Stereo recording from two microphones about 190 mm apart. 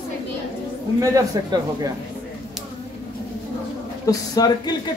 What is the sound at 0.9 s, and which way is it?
Speech, 15° right (ahead or behind).